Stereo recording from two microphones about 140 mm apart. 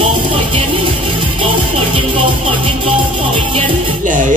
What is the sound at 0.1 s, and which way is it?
Music, 40° right (ahead or behind).